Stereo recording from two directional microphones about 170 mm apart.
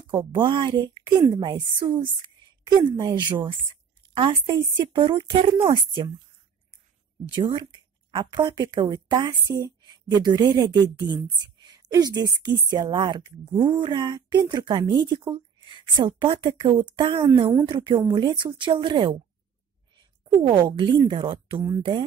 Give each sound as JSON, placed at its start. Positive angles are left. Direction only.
{"t": 0.0, "sound": "speech", "side_deg": -25}
{"t": 7.3, "sound": "speech", "side_deg": -25}
{"t": 20.2, "sound": "speech", "side_deg": -30}